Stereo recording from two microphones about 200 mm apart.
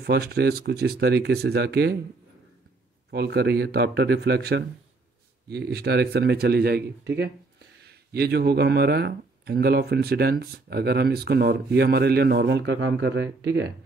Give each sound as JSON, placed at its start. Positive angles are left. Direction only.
{"t": 0.0, "sound": "speech", "side_deg": -55}
{"t": 3.1, "sound": "speech", "side_deg": -55}